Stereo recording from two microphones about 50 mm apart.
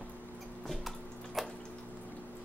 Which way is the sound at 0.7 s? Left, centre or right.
Centre.